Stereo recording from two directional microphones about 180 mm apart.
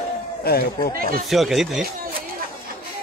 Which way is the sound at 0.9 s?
55° right (ahead or behind).